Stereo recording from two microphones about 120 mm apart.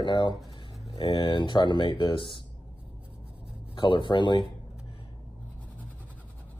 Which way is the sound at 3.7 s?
40° left (ahead or behind).